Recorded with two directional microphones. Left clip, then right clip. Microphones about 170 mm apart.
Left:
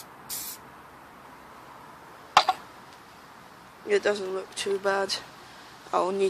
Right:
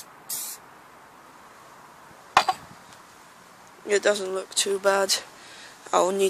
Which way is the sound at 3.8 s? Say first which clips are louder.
Right 3 dB; 55° right (ahead or behind).